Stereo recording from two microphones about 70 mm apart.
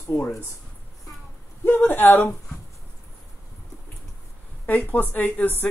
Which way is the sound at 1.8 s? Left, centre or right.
Left.